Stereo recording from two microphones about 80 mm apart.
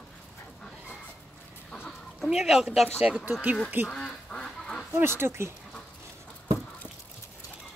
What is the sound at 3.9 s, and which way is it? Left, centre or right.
Duck, centre.